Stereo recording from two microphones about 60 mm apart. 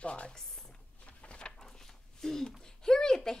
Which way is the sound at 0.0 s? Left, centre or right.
Centre.